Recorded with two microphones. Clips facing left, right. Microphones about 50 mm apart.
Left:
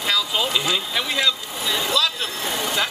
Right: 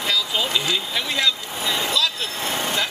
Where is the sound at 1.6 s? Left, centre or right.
Right.